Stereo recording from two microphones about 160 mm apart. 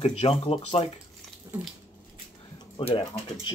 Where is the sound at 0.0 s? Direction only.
40° left (ahead or behind).